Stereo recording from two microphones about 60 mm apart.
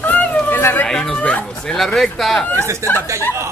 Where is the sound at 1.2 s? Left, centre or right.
Left.